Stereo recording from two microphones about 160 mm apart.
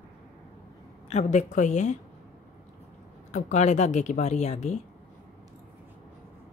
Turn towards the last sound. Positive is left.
turn(degrees=45)  # may be behind; listen again after turning